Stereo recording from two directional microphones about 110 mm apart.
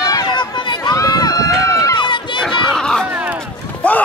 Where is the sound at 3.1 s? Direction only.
15° right (ahead or behind).